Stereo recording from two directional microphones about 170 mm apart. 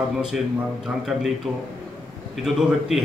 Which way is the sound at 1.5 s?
Centre (ahead or behind).